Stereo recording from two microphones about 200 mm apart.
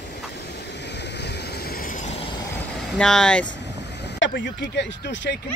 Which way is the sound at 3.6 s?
60° left (ahead or behind).